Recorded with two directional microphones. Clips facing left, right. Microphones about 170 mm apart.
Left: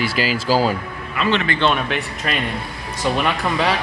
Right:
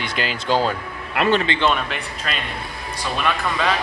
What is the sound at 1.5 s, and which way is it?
Speech, 25° right (ahead or behind).